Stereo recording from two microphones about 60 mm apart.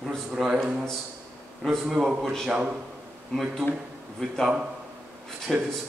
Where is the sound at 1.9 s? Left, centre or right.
Centre.